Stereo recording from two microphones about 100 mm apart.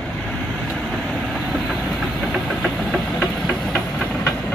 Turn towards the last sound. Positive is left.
turn(degrees=0)  # may be behind; listen again after turning